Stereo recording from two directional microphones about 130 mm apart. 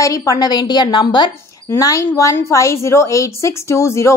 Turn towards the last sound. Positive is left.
turn(degrees=20)  # may be behind; listen again after turning